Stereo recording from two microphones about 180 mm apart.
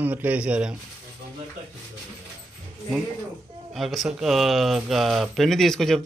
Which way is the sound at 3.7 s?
Centre (ahead or behind).